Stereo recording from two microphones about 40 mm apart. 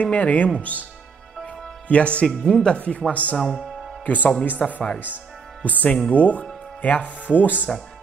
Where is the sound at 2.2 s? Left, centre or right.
Left.